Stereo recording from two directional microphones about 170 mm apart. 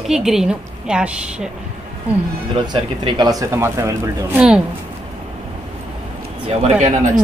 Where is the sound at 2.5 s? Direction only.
25° right (ahead or behind); by 4.6 s 5° right (ahead or behind).